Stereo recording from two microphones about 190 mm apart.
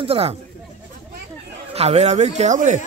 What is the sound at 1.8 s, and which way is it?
Speech, 35° right (ahead or behind).